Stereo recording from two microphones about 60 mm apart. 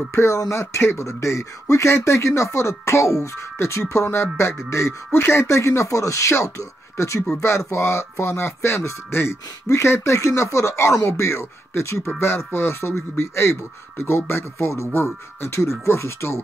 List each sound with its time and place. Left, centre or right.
0.1 s speech: left